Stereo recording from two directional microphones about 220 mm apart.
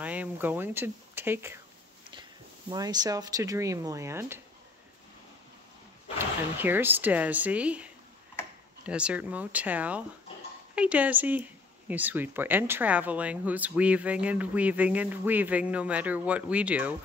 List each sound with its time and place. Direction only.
0.0 s speech: 5° right (ahead or behind)
2.7 s speech: 15° right (ahead or behind)
6.1 s speech: 10° right (ahead or behind)